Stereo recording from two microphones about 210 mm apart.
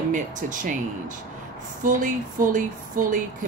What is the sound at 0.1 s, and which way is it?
Speech, 35° right (ahead or behind).